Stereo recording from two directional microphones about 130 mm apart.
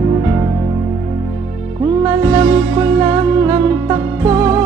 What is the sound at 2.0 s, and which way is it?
Music, 30° right (ahead or behind).